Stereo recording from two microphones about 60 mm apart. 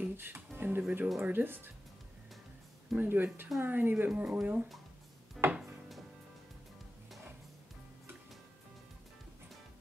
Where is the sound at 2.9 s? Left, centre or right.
Right.